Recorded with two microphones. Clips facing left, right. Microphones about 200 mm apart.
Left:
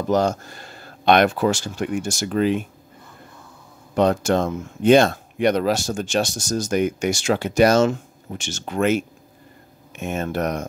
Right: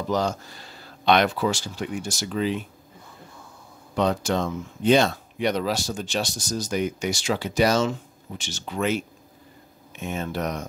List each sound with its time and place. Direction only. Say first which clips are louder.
0.1 s speech: left 6 dB; 50° left (ahead or behind)
3.9 s speech: left 5 dB; 50° left (ahead or behind)